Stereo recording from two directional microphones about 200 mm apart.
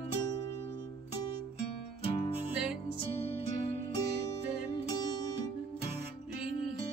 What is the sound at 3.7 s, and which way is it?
Music, 25° left (ahead or behind).